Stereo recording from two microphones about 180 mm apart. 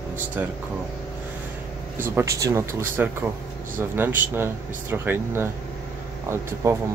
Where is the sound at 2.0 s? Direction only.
15° right (ahead or behind).